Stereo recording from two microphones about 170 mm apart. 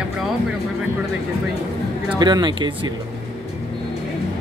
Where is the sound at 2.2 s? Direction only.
25° right (ahead or behind).